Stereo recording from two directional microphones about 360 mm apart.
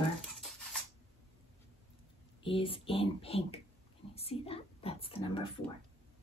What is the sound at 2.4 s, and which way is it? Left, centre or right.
A woman's voice, centre.